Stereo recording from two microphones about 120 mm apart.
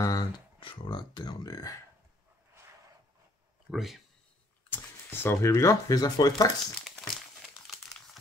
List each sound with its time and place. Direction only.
0.0 s speech: 30° left (ahead or behind)
0.6 s speech: 45° left (ahead or behind)
3.7 s speech: centre (ahead or behind)
4.6 s speech: 15° left (ahead or behind); by 6.5 s 35° left (ahead or behind)